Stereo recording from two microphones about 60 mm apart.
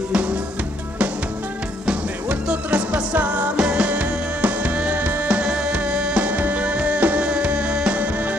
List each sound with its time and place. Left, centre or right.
1.9 s music: centre